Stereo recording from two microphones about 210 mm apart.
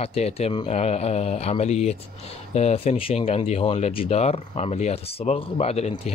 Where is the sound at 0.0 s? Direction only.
30° left (ahead or behind).